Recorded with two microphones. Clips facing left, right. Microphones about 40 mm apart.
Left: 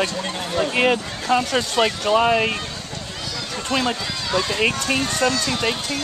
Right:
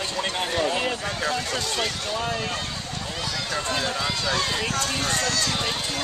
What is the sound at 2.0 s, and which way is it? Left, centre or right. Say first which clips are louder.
Speech: left 10 dB; left.